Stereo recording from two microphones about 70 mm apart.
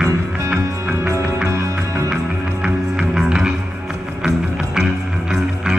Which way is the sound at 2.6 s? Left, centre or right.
Centre.